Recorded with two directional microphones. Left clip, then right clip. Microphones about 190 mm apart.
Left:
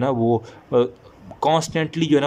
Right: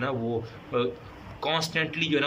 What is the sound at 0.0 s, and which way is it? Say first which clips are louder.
A man's voice: left 9 dB; 35° left (ahead or behind).